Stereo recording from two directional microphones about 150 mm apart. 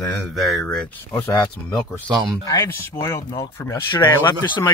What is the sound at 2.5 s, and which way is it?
Speech, 20° left (ahead or behind).